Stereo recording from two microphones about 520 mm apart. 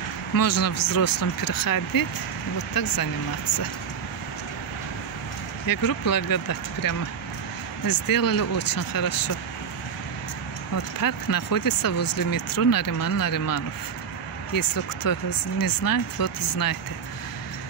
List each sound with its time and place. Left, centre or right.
0.4 s speech: left
5.7 s speech: left
11.0 s speech: left